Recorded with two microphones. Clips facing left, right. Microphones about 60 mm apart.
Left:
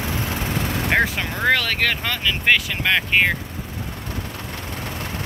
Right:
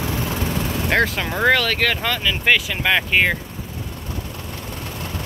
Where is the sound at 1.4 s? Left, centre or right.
Centre.